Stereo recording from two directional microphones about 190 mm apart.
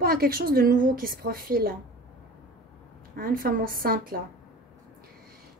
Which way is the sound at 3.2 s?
50° right (ahead or behind).